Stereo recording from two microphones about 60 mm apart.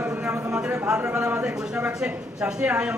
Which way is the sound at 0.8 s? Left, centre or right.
Centre.